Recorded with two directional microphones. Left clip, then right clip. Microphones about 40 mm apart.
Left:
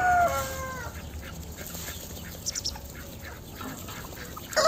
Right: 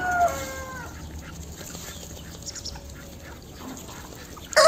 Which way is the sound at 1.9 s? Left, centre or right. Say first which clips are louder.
Even; centre.